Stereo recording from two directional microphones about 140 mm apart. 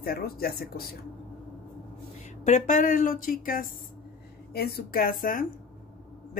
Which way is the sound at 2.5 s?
60° left (ahead or behind).